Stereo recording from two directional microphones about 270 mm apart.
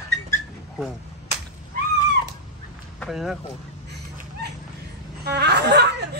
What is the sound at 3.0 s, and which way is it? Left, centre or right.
Speech, centre.